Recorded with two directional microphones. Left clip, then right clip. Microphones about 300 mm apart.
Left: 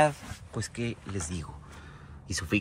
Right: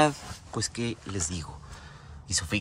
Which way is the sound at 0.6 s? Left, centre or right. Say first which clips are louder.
Right 3 dB; centre.